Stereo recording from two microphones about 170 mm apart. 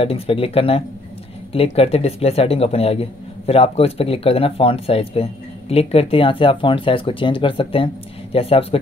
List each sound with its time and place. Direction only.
0.0 s speech: 35° left (ahead or behind)